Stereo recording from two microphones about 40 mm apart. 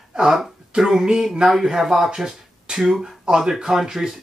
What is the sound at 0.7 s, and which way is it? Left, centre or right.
Speech, centre.